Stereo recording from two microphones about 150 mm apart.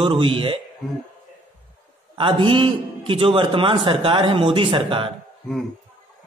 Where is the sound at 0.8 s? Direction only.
Centre (ahead or behind).